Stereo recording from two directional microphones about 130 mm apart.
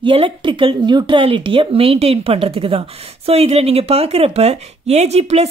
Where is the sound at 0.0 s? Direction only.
40° right (ahead or behind).